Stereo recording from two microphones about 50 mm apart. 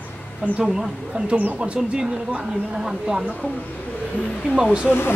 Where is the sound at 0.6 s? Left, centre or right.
Right.